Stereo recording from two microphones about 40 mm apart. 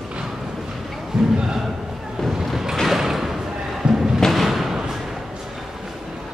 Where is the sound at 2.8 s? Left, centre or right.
Centre.